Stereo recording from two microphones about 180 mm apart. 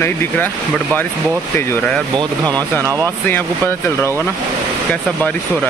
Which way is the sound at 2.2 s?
25° right (ahead or behind).